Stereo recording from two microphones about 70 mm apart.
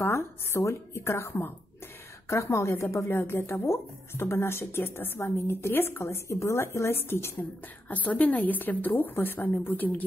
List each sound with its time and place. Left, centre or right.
0.0 s a woman's voice: left
7.9 s a woman's voice: left